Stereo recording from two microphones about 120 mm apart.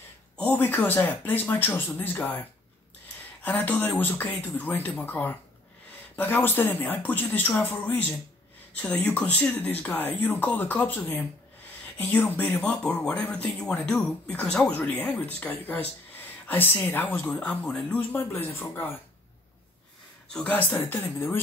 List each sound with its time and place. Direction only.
0.4 s speech: 10° left (ahead or behind)
3.4 s speech: 15° left (ahead or behind)
20.3 s speech: 15° left (ahead or behind)